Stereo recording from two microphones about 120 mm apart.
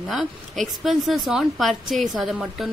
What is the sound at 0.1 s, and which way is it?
A woman's voice, centre (ahead or behind).